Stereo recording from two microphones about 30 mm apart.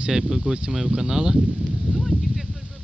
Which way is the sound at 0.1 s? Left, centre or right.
Centre.